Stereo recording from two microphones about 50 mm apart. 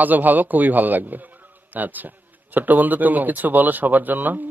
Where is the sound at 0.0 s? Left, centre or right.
Right.